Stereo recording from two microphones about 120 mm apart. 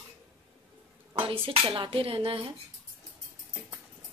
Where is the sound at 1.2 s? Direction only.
50° right (ahead or behind).